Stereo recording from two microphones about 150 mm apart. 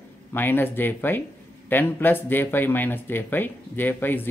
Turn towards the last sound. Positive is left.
turn(degrees=15)  # may be behind; listen again after turning